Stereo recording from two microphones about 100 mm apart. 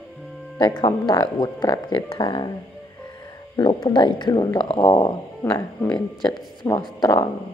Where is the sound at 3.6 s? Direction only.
50° left (ahead or behind).